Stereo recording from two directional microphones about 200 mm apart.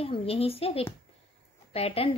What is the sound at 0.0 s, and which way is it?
Speech, 30° left (ahead or behind).